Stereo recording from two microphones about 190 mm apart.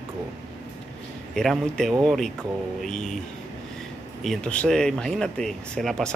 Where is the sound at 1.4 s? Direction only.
Centre (ahead or behind).